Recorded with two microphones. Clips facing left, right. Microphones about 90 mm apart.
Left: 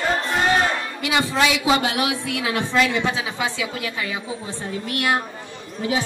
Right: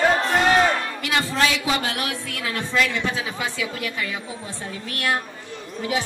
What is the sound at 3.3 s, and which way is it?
Speech, 90° left.